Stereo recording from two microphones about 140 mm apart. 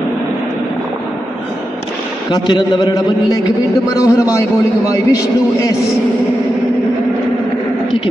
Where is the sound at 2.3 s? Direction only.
30° left (ahead or behind).